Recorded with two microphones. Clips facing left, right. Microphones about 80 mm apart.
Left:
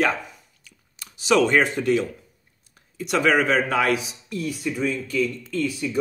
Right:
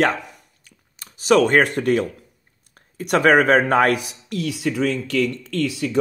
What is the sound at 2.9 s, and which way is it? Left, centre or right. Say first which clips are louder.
Speech: right 5 dB; right.